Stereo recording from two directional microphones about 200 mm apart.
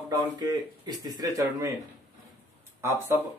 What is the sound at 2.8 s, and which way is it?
Speech, 15° right (ahead or behind).